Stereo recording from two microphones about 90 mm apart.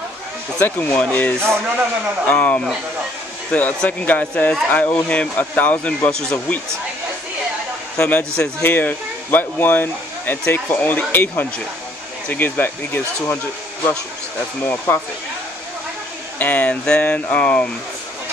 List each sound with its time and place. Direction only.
0.6 s speech: 25° left (ahead or behind)
1.4 s speech: 25° right (ahead or behind)
2.2 s speech: 15° left (ahead or behind)
8.0 s speech: 15° left (ahead or behind)
14.6 s speech: 20° left (ahead or behind)
16.3 s speech: 20° left (ahead or behind)